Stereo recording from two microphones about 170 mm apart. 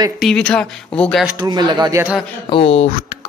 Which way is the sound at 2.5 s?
35° left (ahead or behind).